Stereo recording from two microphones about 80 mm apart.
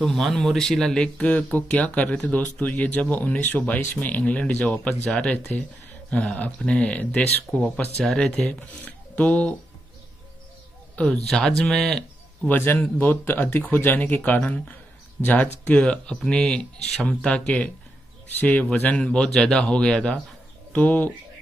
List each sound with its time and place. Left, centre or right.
0.0 s speech: centre
11.0 s speech: centre
12.4 s speech: left